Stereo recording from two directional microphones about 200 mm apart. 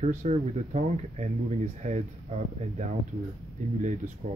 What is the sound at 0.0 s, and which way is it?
Speech, 35° right (ahead or behind).